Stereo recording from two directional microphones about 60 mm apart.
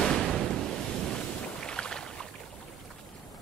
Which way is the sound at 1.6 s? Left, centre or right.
Centre.